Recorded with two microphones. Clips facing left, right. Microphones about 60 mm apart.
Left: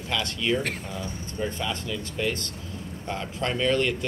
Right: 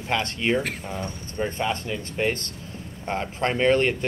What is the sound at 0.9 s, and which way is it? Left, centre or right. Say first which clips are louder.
Speech: right 2 dB; right.